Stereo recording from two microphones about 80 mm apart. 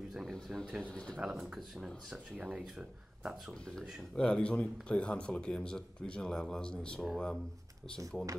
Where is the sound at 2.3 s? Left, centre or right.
Centre.